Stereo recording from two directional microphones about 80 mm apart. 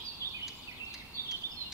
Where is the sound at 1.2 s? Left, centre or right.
Right.